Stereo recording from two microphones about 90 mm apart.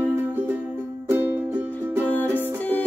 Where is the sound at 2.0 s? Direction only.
20° left (ahead or behind).